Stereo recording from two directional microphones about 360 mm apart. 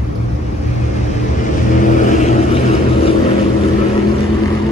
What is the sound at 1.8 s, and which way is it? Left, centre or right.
Vehicle, centre.